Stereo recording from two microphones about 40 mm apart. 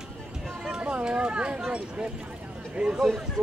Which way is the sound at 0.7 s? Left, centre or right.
Right.